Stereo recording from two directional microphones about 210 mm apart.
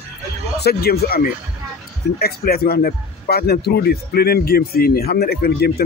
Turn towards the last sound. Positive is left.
turn(degrees=50)  # may be behind; listen again after turning